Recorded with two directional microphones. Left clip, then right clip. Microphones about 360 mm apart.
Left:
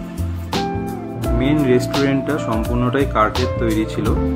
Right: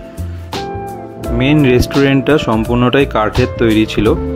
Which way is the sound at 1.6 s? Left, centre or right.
Right.